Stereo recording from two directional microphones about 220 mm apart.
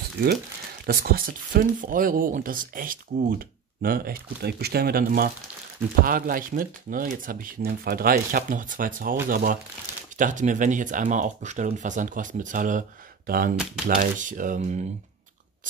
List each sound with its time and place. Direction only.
0.2 s speech: 45° right (ahead or behind)
13.8 s speech: 35° right (ahead or behind)